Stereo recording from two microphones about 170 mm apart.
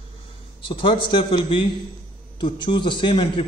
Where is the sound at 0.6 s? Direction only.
30° left (ahead or behind).